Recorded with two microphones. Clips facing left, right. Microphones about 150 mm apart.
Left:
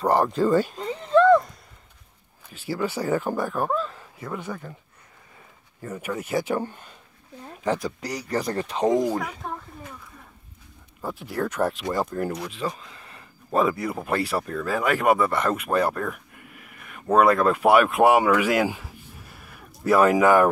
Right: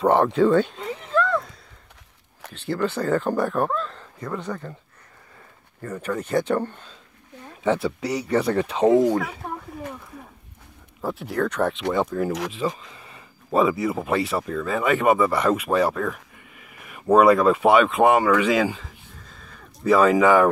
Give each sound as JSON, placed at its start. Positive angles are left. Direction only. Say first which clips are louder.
{"t": 0.0, "sound": "speech", "louder": "right 3 dB", "side_deg": 0}
{"t": 2.5, "sound": "speech", "louder": "right 2 dB", "side_deg": 5}
{"t": 5.8, "sound": "speech", "louder": "right 3 dB", "side_deg": 10}
{"t": 7.7, "sound": "speech", "louder": "right 6 dB", "side_deg": 35}
{"t": 8.9, "sound": "speech", "louder": "right 6 dB", "side_deg": 10}
{"t": 11.0, "sound": "speech", "louder": "right 3 dB", "side_deg": 0}
{"t": 12.3, "sound": "speech", "louder": "right 4 dB", "side_deg": -90}
{"t": 12.5, "sound": "speech", "louder": "right 3 dB", "side_deg": 0}